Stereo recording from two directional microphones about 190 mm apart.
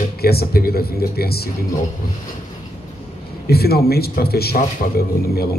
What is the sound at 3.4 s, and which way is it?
Speech, 55° left (ahead or behind).